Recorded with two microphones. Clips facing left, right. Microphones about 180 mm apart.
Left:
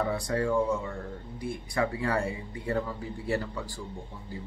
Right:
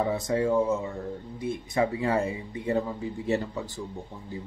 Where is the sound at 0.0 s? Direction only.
20° right (ahead or behind).